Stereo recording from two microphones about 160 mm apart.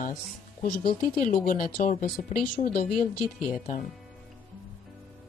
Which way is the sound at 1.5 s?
60° left (ahead or behind).